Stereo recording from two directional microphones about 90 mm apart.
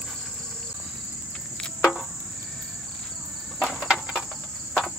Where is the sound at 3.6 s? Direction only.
Centre (ahead or behind).